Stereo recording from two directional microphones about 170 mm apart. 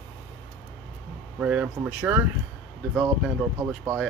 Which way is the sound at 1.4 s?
5° right (ahead or behind).